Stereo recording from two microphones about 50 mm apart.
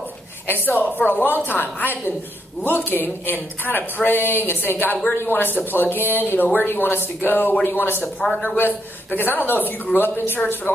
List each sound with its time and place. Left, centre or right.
0.5 s a woman's voice: left